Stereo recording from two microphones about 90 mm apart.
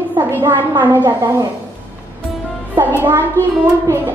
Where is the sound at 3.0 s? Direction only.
25° right (ahead or behind).